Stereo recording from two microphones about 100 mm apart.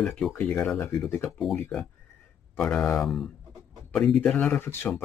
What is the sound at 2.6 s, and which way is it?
Speech, 5° left (ahead or behind).